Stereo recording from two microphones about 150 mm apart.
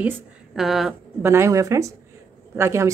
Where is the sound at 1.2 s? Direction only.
15° right (ahead or behind).